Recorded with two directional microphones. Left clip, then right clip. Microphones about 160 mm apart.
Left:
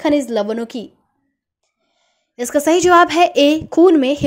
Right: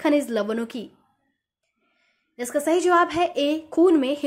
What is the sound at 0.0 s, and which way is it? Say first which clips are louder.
Speech: left 5 dB; 25° left (ahead or behind).